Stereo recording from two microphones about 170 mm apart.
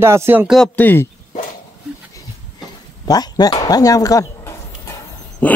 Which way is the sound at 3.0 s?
25° left (ahead or behind).